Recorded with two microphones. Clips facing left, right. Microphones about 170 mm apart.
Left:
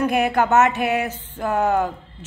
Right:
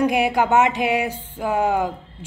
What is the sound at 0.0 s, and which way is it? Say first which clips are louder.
Speech: even; 10° right (ahead or behind).